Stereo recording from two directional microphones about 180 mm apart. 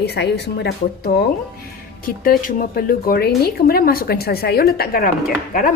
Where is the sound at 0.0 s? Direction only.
65° left (ahead or behind).